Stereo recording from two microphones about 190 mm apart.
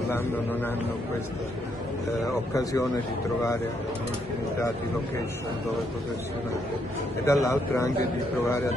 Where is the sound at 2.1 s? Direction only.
15° left (ahead or behind).